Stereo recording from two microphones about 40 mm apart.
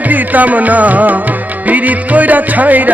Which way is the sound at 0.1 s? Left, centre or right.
Right.